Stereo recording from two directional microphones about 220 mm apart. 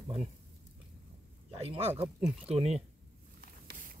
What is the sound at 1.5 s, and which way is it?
Speech, 25° right (ahead or behind).